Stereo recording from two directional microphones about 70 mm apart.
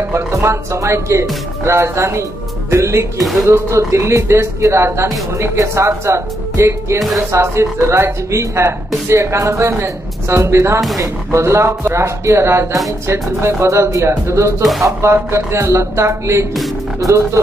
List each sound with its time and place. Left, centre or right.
0.1 s speech: right
14.6 s speech: centre
15.0 s speech: right